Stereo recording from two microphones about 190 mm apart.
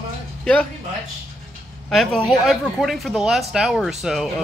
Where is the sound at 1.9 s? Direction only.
Centre (ahead or behind).